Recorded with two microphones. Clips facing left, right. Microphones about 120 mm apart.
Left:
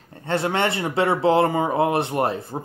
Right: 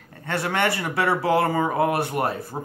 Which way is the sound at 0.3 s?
25° left (ahead or behind).